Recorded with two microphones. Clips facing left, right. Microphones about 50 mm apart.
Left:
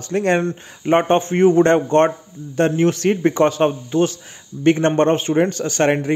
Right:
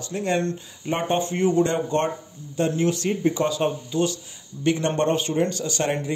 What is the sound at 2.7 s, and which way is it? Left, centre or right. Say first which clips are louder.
Speech: left 6 dB; left.